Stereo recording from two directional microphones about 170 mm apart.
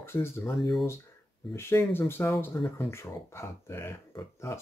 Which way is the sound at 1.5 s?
15° left (ahead or behind).